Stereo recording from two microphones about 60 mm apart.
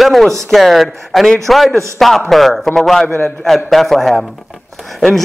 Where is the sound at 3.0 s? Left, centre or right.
Left.